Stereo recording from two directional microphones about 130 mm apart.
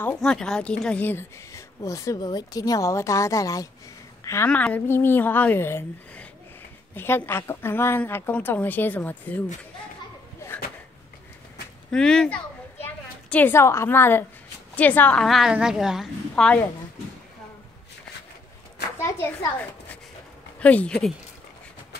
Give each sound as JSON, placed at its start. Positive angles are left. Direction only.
{"t": 0.2, "sound": "a woman's voice", "side_deg": 5}
{"t": 4.2, "sound": "a sound", "side_deg": 20}
{"t": 4.5, "sound": "a woman's voice", "side_deg": 10}
{"t": 11.9, "sound": "a woman's voice", "side_deg": 5}
{"t": 15.2, "sound": "a woman's voice", "side_deg": 0}
{"t": 16.3, "sound": "a woman's voice", "side_deg": 10}
{"t": 18.9, "sound": "a sound", "side_deg": 20}
{"t": 20.5, "sound": "speech", "side_deg": 10}